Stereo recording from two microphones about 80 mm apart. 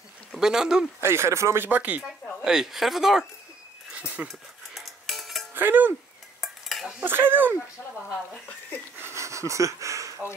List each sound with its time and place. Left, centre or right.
0.4 s speech: centre
1.0 s speech: right
1.7 s speech: centre
2.4 s speech: centre
3.9 s dog: centre
4.3 s cutlery: centre
5.5 s a sound: right
6.4 s dishes: centre
7.0 s speech: right
8.9 s a sound: right